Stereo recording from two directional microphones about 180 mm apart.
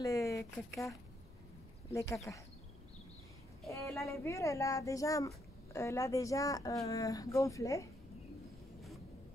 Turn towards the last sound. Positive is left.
turn(degrees=15)  # may be behind; listen again after turning